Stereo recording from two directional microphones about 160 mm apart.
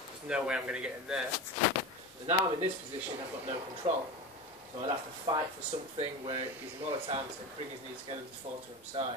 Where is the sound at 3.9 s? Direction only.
40° right (ahead or behind).